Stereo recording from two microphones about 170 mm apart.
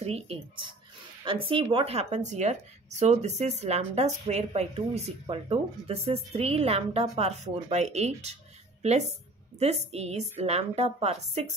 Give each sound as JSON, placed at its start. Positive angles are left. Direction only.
{"t": 0.0, "sound": "speech", "side_deg": -35}
{"t": 9.6, "sound": "speech", "side_deg": -40}